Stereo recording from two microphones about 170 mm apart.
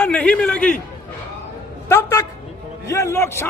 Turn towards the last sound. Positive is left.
turn(degrees=15)  # may be behind; listen again after turning